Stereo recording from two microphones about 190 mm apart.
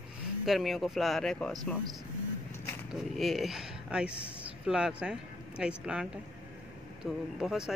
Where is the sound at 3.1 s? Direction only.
Centre (ahead or behind).